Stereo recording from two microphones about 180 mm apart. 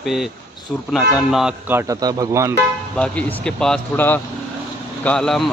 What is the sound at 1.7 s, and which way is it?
Speech, 15° right (ahead or behind).